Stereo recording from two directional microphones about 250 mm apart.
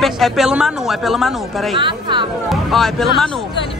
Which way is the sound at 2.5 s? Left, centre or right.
Centre.